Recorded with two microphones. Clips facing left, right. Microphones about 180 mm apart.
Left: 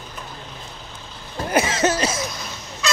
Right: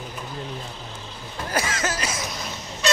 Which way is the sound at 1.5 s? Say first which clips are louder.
Left 7 dB; 25° left (ahead or behind).